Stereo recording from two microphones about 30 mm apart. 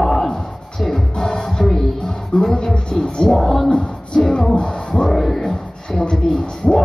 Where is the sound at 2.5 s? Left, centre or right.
Left.